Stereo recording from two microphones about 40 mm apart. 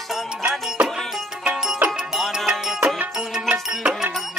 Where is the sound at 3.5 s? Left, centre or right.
Right.